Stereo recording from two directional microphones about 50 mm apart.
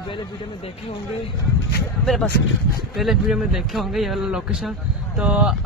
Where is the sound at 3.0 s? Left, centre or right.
Centre.